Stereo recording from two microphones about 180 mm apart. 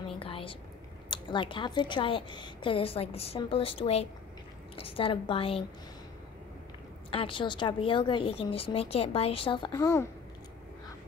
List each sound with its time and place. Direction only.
0.2 s whispering: 30° left (ahead or behind)
1.1 s a woman's voice: 25° left (ahead or behind)
7.1 s a woman's voice: 30° left (ahead or behind)